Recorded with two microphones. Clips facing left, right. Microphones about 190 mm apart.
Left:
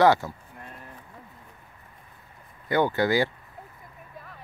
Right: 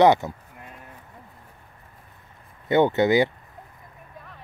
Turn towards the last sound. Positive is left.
turn(degrees=-20)  # may be behind; listen again after turning